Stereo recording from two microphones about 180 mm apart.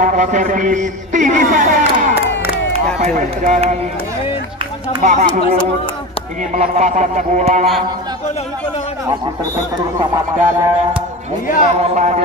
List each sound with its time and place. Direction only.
0.0 s a man's voice: 45° right (ahead or behind)
5.0 s speech: 40° right (ahead or behind)
9.9 s speech: 15° right (ahead or behind)
11.6 s speech: 40° right (ahead or behind)